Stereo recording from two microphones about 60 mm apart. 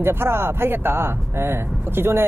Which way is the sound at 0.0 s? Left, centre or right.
Right.